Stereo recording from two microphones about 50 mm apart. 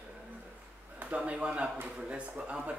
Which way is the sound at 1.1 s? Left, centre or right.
Right.